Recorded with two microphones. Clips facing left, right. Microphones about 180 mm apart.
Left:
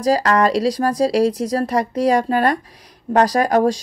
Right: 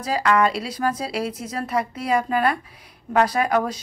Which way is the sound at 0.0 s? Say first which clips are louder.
Left 4 dB; 40° left (ahead or behind).